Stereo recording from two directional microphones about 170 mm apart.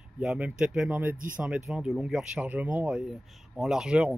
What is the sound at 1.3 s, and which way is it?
Speech, 5° right (ahead or behind).